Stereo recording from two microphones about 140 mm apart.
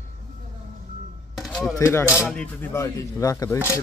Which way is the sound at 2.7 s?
25° left (ahead or behind).